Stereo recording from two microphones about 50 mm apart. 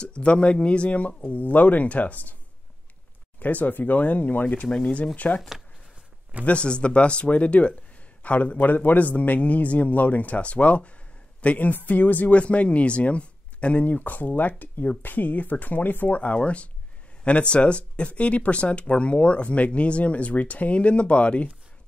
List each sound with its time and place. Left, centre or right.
0.2 s a man's voice: left
3.3 s a man's voice: left
4.6 s speech: centre
5.1 s a man's voice: left
6.4 s a man's voice: left